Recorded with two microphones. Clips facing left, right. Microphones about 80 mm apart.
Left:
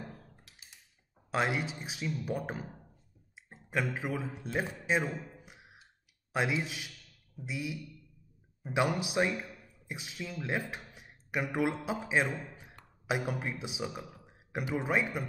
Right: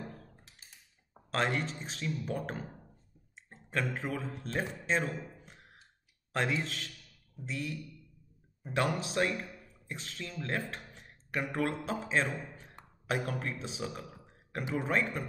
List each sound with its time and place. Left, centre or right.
1.3 s a man's voice: centre
3.4 s a sound: centre
3.9 s a man's voice: centre